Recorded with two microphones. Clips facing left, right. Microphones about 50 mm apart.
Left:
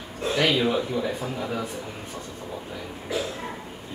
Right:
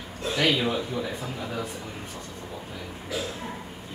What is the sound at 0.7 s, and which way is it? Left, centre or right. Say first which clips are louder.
Speech: left 3 dB; centre.